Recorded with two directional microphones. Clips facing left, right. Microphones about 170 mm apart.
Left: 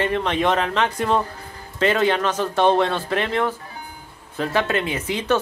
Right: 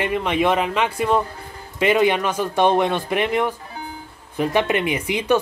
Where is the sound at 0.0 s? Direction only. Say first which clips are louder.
Right 1 dB; 10° right (ahead or behind).